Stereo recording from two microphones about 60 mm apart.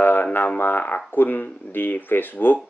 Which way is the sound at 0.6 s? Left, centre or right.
Left.